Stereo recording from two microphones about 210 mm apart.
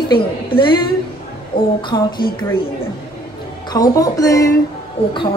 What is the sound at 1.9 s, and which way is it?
Speech, 20° left (ahead or behind).